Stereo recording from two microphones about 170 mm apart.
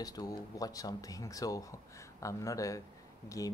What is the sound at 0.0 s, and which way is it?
Speech, 25° left (ahead or behind).